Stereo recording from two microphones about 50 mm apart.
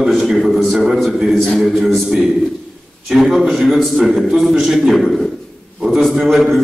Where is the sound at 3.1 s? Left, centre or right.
Centre.